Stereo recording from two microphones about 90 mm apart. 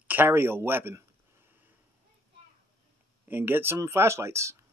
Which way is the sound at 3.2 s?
20° right (ahead or behind).